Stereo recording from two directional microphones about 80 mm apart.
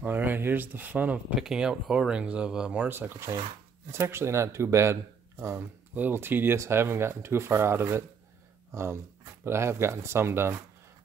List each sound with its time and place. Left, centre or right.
0.0 s speech: right
1.3 s speech: centre
2.9 s speech: right
5.9 s speech: right